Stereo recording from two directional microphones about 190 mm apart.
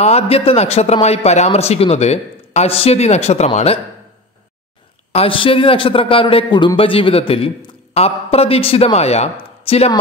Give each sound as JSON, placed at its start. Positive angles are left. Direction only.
{"t": 0.0, "sound": "a man's voice", "side_deg": 35}
{"t": 5.1, "sound": "a man's voice", "side_deg": 30}